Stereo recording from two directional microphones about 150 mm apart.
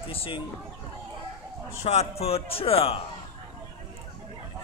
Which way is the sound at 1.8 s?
45° left (ahead or behind).